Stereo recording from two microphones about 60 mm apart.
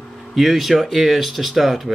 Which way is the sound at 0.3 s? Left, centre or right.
Centre.